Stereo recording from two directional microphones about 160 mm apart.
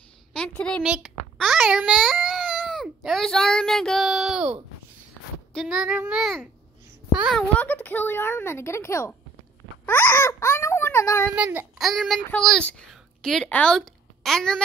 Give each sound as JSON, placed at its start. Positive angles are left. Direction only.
{"t": 0.3, "sound": "a woman's voice", "side_deg": 5}
{"t": 0.8, "sound": "a child's voice", "side_deg": -5}
{"t": 7.3, "sound": "speech", "side_deg": 10}
{"t": 11.3, "sound": "a child's voice", "side_deg": -10}